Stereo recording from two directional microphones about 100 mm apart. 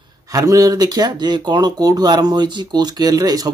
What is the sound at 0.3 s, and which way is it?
Speech, 35° right (ahead or behind).